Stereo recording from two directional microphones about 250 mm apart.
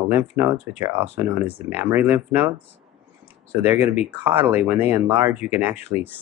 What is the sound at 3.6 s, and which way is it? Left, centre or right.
Speech, centre.